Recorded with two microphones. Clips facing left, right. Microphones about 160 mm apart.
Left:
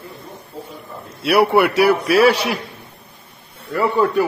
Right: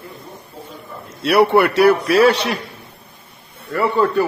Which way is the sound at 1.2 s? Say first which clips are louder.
Right 1 dB; 5° left (ahead or behind).